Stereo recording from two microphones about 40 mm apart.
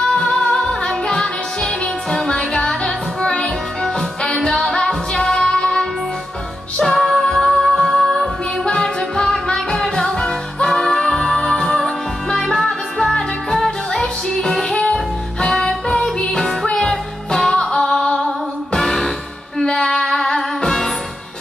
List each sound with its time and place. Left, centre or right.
0.0 s music: centre
6.8 s music: centre
8.6 s music: centre